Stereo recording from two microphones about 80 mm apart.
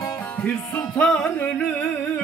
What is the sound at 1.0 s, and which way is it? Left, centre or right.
Music, centre.